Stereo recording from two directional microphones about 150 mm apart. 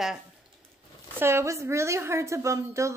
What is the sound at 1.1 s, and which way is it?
A woman's voice, 15° right (ahead or behind).